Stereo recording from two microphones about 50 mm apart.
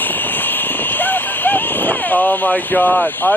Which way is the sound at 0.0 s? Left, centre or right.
Left.